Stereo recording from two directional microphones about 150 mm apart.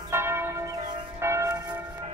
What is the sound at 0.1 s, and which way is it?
Church bell, 15° right (ahead or behind).